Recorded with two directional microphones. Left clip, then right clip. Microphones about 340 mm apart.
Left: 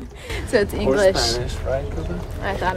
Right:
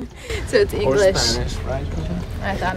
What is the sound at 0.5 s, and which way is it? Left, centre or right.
Speech, centre.